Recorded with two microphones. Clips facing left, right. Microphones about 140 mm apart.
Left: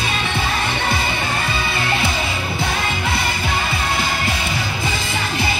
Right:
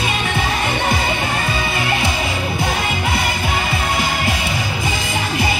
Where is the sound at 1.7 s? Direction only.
15° right (ahead or behind).